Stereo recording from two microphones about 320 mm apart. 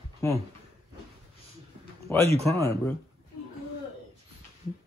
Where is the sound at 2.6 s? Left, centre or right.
Centre.